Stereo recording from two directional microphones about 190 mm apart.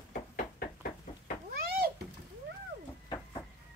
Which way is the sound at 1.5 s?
55° right (ahead or behind).